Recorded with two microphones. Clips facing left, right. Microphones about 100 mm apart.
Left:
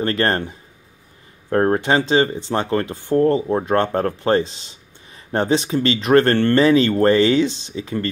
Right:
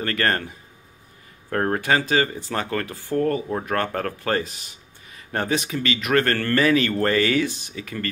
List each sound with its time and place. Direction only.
0.0 s speech: 25° left (ahead or behind)